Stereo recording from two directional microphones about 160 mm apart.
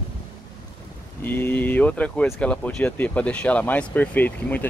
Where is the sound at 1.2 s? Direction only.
10° left (ahead or behind).